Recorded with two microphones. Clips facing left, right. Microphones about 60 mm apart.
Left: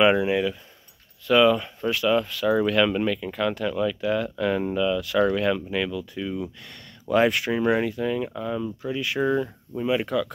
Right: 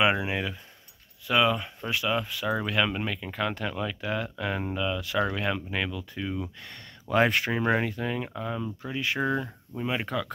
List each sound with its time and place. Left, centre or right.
0.0 s speech: centre
9.2 s speech: centre
9.8 s speech: right